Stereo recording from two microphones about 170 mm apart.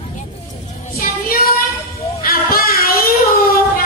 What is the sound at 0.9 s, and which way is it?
Music, 65° left (ahead or behind).